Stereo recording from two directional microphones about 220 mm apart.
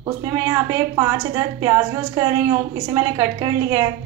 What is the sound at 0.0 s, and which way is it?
A woman's voice, 15° right (ahead or behind).